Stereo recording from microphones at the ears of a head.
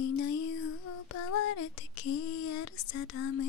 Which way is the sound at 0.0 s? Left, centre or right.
Left.